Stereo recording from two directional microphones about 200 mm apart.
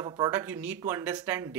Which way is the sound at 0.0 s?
15° right (ahead or behind).